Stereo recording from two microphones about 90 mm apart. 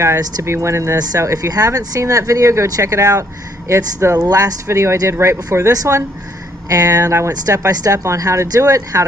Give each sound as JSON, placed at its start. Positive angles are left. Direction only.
{"t": 0.2, "sound": "speech", "side_deg": -35}